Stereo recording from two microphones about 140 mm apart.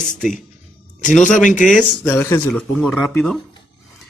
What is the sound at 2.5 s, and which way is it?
Speech, 5° left (ahead or behind).